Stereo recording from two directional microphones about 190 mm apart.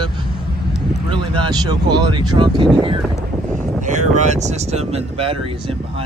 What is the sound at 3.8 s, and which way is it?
Speech, 40° right (ahead or behind).